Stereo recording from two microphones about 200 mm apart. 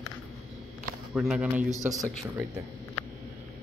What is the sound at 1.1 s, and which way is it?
Speech, 5° right (ahead or behind).